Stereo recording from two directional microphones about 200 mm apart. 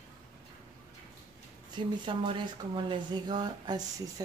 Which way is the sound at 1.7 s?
25° right (ahead or behind).